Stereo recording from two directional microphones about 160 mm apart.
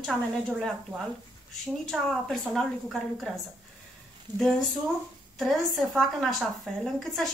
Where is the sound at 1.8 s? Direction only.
Centre (ahead or behind).